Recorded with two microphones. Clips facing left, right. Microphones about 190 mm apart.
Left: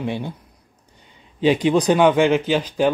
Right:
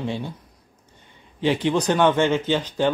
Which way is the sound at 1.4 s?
15° left (ahead or behind).